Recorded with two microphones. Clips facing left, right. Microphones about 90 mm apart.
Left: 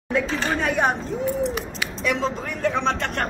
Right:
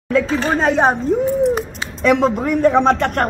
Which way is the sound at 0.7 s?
30° right (ahead or behind).